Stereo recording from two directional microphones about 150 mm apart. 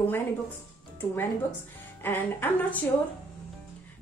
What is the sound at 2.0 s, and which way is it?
Speech, 15° left (ahead or behind).